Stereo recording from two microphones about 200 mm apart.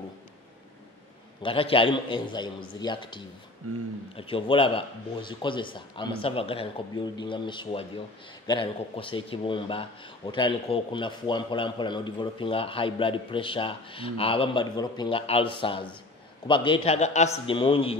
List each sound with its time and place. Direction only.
1.4 s speech: 25° left (ahead or behind)